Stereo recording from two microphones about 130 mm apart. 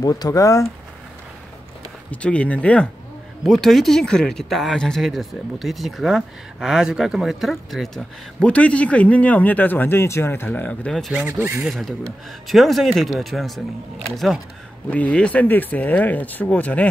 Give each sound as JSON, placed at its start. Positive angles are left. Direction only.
{"t": 0.0, "sound": "speech", "side_deg": 30}
{"t": 2.0, "sound": "speech", "side_deg": 10}
{"t": 11.1, "sound": "speech", "side_deg": -15}
{"t": 11.6, "sound": "speech", "side_deg": 0}
{"t": 14.9, "sound": "speech", "side_deg": 10}